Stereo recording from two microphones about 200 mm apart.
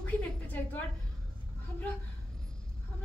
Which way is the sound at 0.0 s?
10° left (ahead or behind).